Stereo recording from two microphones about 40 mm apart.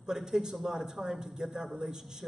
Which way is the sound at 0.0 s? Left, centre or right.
Centre.